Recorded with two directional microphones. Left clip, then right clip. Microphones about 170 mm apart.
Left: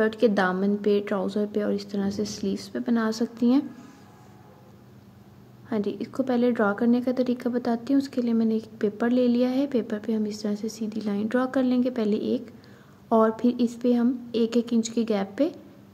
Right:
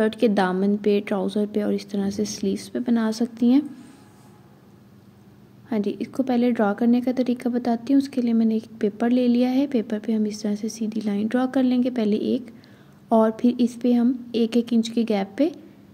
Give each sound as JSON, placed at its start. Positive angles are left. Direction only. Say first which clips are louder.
{"t": 0.0, "sound": "a woman's voice", "louder": "right 1 dB", "side_deg": -15}
{"t": 5.7, "sound": "a woman's voice", "louder": "right 2 dB", "side_deg": -15}